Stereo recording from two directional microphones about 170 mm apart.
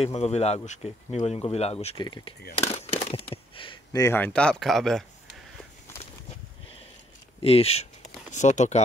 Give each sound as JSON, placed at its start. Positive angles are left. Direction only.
{"t": 0.0, "sound": "speech", "side_deg": 40}
{"t": 2.5, "sound": "speech", "side_deg": 40}
{"t": 7.4, "sound": "speech", "side_deg": 35}